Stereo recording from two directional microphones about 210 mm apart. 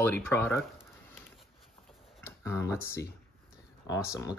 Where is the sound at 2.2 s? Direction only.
10° left (ahead or behind).